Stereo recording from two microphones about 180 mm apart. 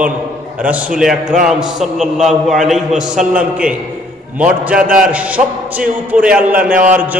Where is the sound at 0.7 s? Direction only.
5° right (ahead or behind).